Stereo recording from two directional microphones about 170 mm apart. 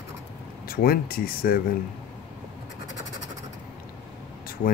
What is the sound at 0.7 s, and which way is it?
Speech, 60° left (ahead or behind).